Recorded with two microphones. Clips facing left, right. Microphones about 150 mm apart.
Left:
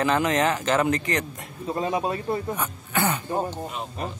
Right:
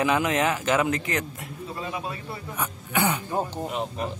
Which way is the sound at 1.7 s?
35° left (ahead or behind).